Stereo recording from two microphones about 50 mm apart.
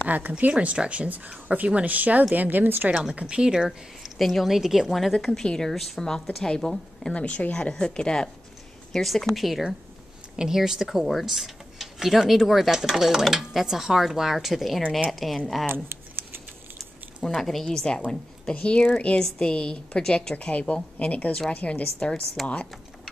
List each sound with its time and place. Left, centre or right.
0.4 s speech: right
2.9 s a woman's voice: centre
7.2 s a woman's voice: left
8.9 s a woman's voice: centre
10.3 s a woman's voice: centre
15.7 s a sound: right
17.3 s a woman's voice: centre; by 21.8 s left
22.4 s a woman's voice: centre